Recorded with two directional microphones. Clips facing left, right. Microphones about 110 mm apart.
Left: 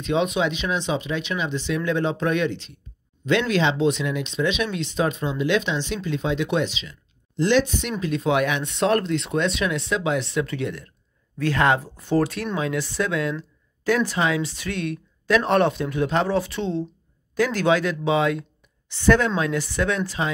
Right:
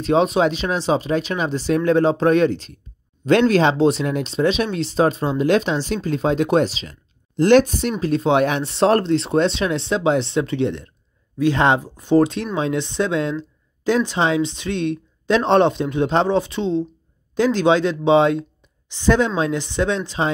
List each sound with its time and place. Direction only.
0.0 s speech: 35° right (ahead or behind)
18.9 s speech: 15° right (ahead or behind)